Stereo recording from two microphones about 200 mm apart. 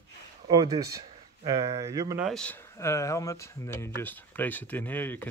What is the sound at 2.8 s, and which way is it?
Speech, 15° left (ahead or behind).